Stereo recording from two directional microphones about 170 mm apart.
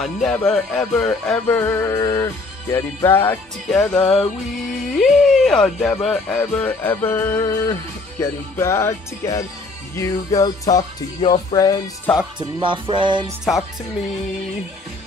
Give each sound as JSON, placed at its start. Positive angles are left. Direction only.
{"t": 0.0, "sound": "music", "side_deg": 0}
{"t": 12.4, "sound": "music", "side_deg": -30}